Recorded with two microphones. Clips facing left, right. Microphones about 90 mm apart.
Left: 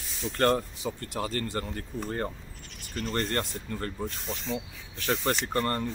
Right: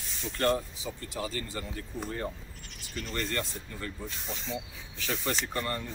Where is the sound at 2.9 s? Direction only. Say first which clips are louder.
Left 4 dB; 45° left (ahead or behind).